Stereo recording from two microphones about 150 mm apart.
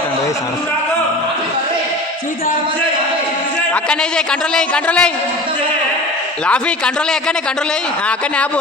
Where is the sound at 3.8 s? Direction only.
5° left (ahead or behind).